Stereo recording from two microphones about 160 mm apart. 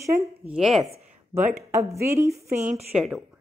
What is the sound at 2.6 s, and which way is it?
Speech, 45° right (ahead or behind).